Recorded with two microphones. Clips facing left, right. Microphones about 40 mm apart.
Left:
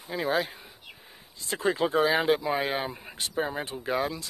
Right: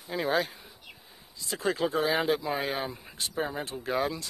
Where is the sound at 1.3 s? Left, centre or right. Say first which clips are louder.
Left 3 dB; left.